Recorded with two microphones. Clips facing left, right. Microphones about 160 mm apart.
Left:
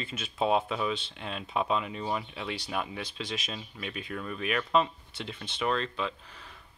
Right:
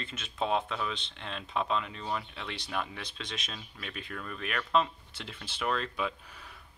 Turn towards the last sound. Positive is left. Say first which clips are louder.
# even
turn(degrees=-10)  # may be behind; listen again after turning